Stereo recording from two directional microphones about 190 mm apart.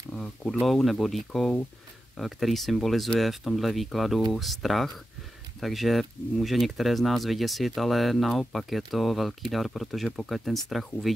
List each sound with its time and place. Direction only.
0.1 s speech: 5° left (ahead or behind)